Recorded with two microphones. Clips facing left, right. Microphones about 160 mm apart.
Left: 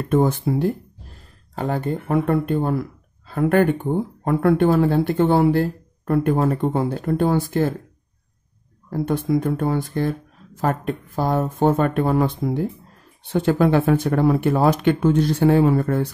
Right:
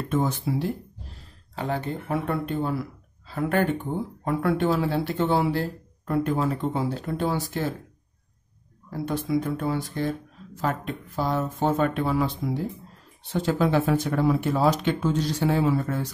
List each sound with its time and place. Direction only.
0.1 s speech: 55° left (ahead or behind)
8.9 s speech: 50° left (ahead or behind)